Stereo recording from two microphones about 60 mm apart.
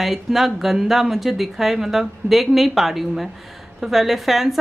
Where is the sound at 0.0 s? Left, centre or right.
Centre.